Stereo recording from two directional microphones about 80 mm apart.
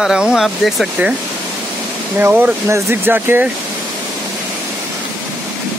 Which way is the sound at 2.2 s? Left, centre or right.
Right.